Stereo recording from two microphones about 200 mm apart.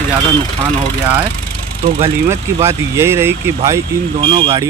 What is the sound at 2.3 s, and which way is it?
Speech, 15° right (ahead or behind).